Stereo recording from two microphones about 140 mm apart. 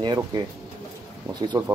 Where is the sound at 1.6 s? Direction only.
30° right (ahead or behind).